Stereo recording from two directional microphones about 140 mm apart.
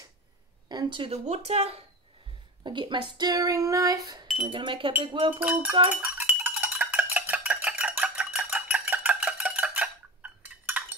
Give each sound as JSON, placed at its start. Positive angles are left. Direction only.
{"t": 0.7, "sound": "speech", "side_deg": -30}
{"t": 1.1, "sound": "speech", "side_deg": -50}
{"t": 2.6, "sound": "speech", "side_deg": -35}
{"t": 4.6, "sound": "speech", "side_deg": -40}
{"t": 5.4, "sound": "a sound", "side_deg": -15}